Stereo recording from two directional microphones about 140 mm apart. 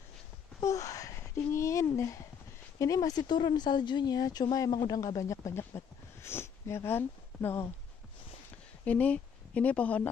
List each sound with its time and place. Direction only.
0.6 s a sound: 25° left (ahead or behind)
2.8 s speech: 25° left (ahead or behind)
8.8 s speech: 10° left (ahead or behind)